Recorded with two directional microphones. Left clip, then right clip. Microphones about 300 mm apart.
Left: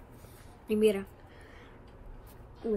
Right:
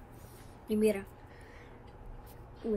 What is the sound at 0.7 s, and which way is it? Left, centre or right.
Speech, left.